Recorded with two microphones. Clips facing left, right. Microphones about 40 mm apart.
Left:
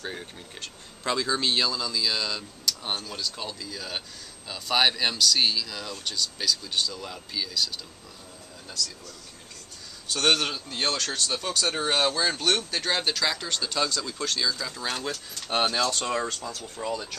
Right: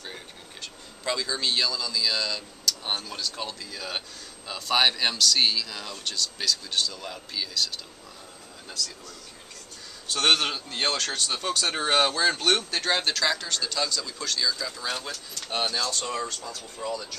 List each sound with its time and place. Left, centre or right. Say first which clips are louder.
1.0 s speech: left 2 dB; centre
2.8 s speech: right 1 dB; centre
4.6 s speech: even; centre
10.1 s speech: right 1 dB; centre
13.4 s speech: even; centre
13.7 s speech: left 3 dB; left
14.4 s speech: right 3 dB; centre
15.5 s speech: left 3 dB; left